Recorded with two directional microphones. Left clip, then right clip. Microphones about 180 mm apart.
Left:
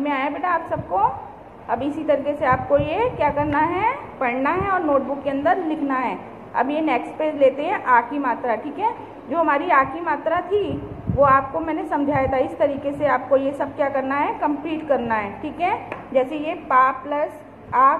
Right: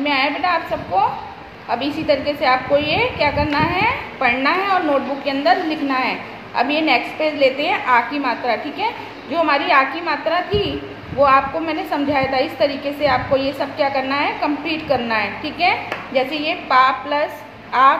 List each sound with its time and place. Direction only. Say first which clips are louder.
0.0 s a woman's voice: right 5 dB; 15° left (ahead or behind)